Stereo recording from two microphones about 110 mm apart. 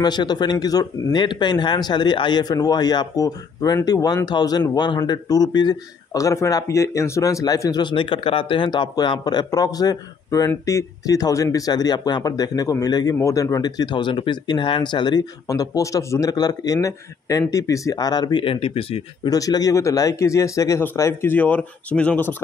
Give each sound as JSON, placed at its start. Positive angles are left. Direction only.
{"t": 0.0, "sound": "speech", "side_deg": 40}
{"t": 7.8, "sound": "speech", "side_deg": 50}
{"t": 18.4, "sound": "speech", "side_deg": 60}
{"t": 19.2, "sound": "speech", "side_deg": 35}